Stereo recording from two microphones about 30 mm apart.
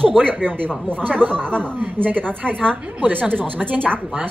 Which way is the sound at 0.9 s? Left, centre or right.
Right.